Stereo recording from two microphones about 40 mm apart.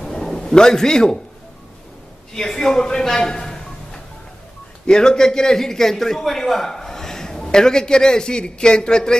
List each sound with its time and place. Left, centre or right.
0.0 s a sound: centre
0.5 s a man's voice: centre
2.3 s a man's voice: centre